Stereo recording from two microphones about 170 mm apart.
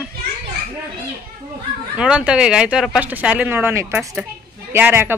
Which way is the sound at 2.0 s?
5° right (ahead or behind).